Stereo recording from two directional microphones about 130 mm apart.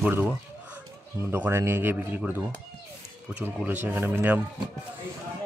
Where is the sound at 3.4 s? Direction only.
15° right (ahead or behind).